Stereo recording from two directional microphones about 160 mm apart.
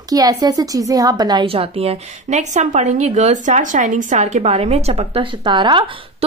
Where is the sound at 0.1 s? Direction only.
25° right (ahead or behind).